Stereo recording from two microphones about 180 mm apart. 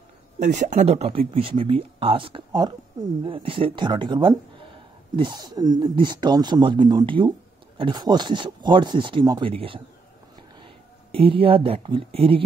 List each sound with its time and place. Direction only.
0.4 s speech: 40° right (ahead or behind)
11.1 s speech: 30° right (ahead or behind)